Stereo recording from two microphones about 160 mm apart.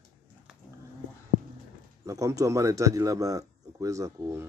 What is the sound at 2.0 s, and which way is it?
A man's voice, 20° right (ahead or behind).